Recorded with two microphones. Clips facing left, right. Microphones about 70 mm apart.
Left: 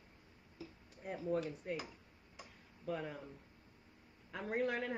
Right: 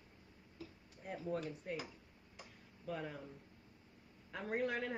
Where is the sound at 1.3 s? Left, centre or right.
Centre.